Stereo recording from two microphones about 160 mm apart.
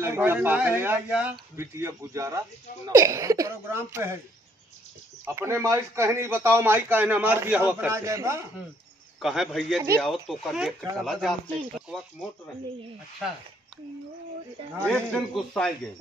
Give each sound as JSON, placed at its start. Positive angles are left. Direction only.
{"t": 0.0, "sound": "a man's voice", "side_deg": -15}
{"t": 5.2, "sound": "a man's voice", "side_deg": -15}
{"t": 9.2, "sound": "speech", "side_deg": 0}
{"t": 14.9, "sound": "speech", "side_deg": 5}